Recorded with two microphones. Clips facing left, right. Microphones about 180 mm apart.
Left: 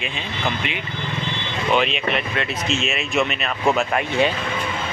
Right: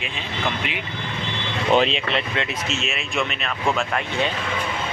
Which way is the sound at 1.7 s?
30° right (ahead or behind).